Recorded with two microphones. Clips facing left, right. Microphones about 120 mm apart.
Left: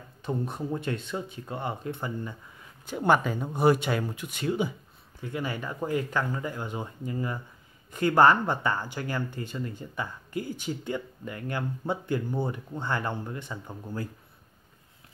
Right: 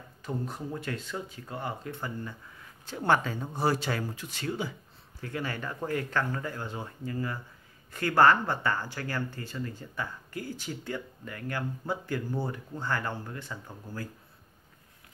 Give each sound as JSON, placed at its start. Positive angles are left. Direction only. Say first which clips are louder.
{"t": 0.2, "sound": "speech", "louder": "left 4 dB", "side_deg": 25}